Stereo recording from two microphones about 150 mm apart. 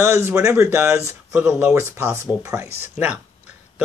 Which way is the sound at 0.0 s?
15° right (ahead or behind).